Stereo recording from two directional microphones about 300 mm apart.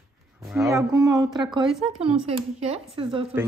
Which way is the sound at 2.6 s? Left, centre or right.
Centre.